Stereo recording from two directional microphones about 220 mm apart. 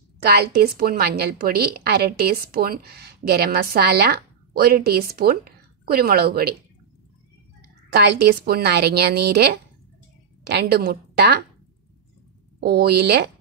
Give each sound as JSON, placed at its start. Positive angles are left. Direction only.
{"t": 0.2, "sound": "a woman's voice", "side_deg": -45}
{"t": 7.9, "sound": "a woman's voice", "side_deg": -45}
{"t": 12.5, "sound": "a woman's voice", "side_deg": -45}